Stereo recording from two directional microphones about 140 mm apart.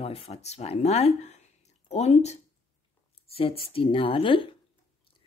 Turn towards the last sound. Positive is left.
turn(degrees=40)  # may be behind; listen again after turning